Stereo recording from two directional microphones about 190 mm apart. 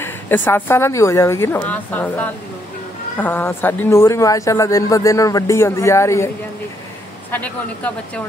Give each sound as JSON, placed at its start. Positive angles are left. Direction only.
{"t": 0.0, "sound": "a man's voice", "side_deg": 10}